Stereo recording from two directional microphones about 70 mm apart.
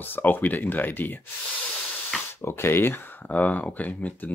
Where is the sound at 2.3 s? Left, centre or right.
Left.